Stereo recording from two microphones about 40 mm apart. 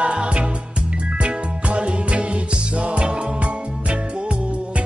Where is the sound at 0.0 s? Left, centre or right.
Right.